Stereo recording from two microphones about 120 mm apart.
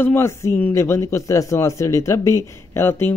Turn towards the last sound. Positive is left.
turn(degrees=20)  # may be behind; listen again after turning